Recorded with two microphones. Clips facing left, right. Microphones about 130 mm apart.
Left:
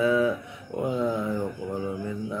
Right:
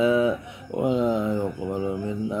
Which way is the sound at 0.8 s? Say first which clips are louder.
Right 4 dB; 20° right (ahead or behind).